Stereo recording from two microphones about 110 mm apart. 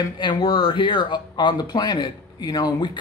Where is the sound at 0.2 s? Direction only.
50° left (ahead or behind).